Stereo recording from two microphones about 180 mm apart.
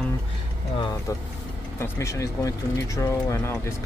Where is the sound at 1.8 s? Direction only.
15° left (ahead or behind).